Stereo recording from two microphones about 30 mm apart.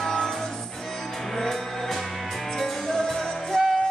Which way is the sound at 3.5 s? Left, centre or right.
Left.